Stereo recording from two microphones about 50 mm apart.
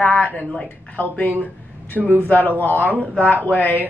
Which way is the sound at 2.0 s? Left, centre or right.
Right.